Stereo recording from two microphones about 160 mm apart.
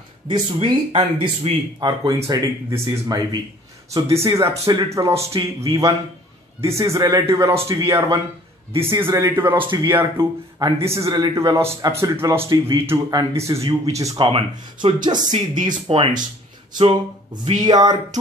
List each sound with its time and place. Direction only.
0.3 s a man's voice: 35° right (ahead or behind); by 9.7 s 15° right (ahead or behind)
9.7 s a man's voice: 25° right (ahead or behind)